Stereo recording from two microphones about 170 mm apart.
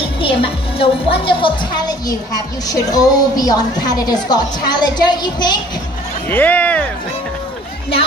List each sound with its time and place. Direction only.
0.2 s a woman's voice: 35° left (ahead or behind)
6.2 s speech: 10° left (ahead or behind)